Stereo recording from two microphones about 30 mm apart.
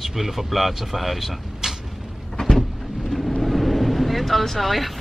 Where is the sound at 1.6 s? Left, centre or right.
Centre.